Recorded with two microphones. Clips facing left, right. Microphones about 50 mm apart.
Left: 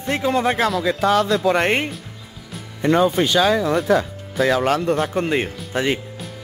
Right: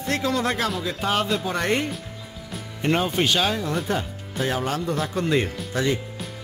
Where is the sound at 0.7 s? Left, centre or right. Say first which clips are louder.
Left 7 dB; left.